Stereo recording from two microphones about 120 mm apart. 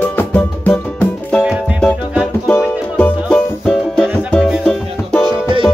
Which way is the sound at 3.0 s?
5° left (ahead or behind).